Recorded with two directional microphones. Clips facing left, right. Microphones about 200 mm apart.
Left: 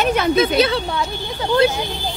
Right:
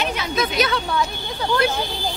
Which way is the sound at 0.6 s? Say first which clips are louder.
Left 5 dB; 30° left (ahead or behind).